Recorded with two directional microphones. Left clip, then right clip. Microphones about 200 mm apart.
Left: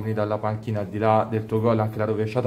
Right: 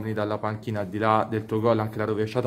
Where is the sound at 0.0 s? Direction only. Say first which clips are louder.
Left 2 dB; 40° right (ahead or behind).